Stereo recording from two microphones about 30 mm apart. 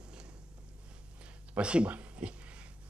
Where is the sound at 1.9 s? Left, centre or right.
Right.